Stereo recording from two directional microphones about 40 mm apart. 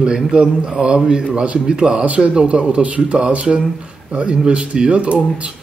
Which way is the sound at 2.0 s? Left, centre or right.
Right.